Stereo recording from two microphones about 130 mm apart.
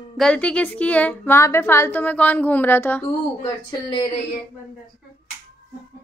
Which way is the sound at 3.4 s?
40° left (ahead or behind).